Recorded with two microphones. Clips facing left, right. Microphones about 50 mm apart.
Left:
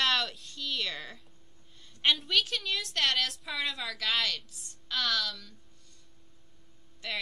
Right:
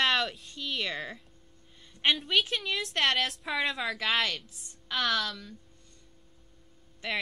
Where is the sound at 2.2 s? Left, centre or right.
Centre.